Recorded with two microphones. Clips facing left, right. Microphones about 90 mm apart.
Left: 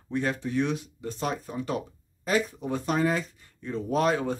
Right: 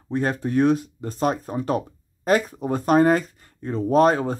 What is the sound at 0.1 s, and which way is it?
Speech, 40° right (ahead or behind).